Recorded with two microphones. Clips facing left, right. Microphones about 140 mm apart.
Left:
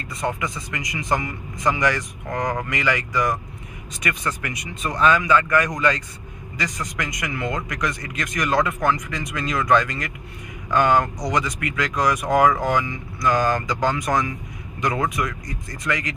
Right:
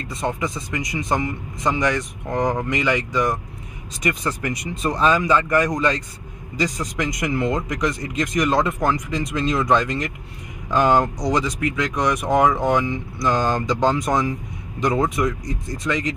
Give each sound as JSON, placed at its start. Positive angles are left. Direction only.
{"t": 0.4, "sound": "a man's voice", "side_deg": -25}
{"t": 15.8, "sound": "speech", "side_deg": -10}